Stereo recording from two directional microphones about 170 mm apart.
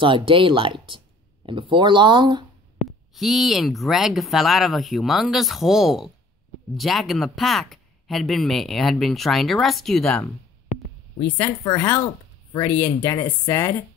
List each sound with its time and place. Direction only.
0.0 s speech: 30° right (ahead or behind)
3.2 s speech: centre (ahead or behind)
10.7 s a sound: 40° left (ahead or behind)
11.6 s speech: 20° left (ahead or behind)